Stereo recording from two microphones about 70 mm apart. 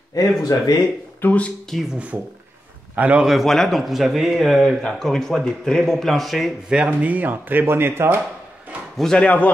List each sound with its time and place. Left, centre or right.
0.1 s speech: left
1.2 s a man's voice: centre
1.7 s speech: centre
3.0 s a man's voice: centre
3.3 s speech: centre
6.7 s speech: centre; by 8.2 s right
8.9 s speech: centre
9.2 s a man's voice: left